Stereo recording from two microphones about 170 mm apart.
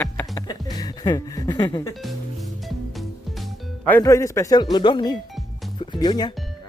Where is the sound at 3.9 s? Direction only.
20° left (ahead or behind).